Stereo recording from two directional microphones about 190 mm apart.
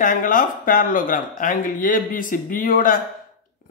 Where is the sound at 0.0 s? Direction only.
45° left (ahead or behind).